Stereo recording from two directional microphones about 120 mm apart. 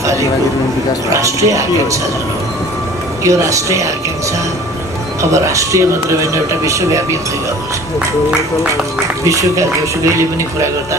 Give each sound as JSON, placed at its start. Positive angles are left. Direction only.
{"t": 1.1, "sound": "speech", "side_deg": -25}
{"t": 3.3, "sound": "speech", "side_deg": -25}
{"t": 5.3, "sound": "speech", "side_deg": -25}
{"t": 9.2, "sound": "speech", "side_deg": -25}